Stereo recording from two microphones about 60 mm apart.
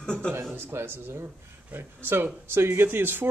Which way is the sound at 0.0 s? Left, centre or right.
Centre.